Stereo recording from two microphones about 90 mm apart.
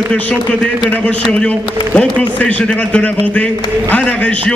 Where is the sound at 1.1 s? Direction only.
15° left (ahead or behind).